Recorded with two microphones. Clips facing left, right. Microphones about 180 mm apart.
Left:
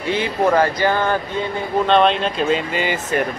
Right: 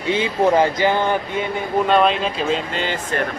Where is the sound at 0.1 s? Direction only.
20° right (ahead or behind).